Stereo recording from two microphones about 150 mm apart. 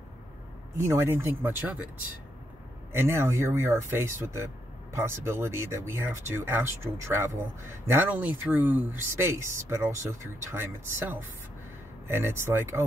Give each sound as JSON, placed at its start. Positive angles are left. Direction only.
{"t": 0.7, "sound": "speech", "side_deg": -15}